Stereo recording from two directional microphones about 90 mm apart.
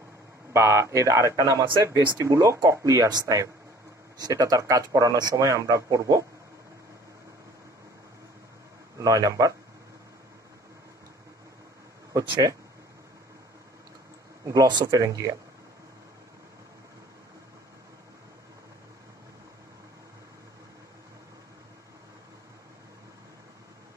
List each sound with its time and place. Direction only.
0.5 s speech: 30° right (ahead or behind)
9.0 s speech: 45° right (ahead or behind)
12.1 s speech: 40° right (ahead or behind)
14.4 s speech: 45° right (ahead or behind)